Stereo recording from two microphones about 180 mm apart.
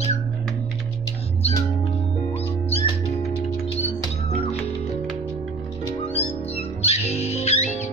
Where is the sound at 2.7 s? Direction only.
35° left (ahead or behind).